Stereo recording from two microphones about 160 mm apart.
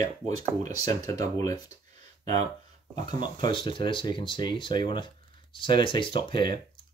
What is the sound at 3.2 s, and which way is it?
Speech, 30° left (ahead or behind).